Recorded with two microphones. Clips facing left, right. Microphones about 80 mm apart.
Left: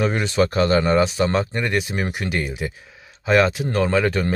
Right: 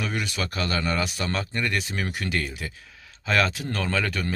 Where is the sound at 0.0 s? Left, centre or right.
Left.